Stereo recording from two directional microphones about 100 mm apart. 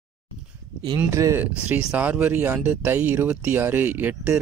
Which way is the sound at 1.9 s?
15° right (ahead or behind).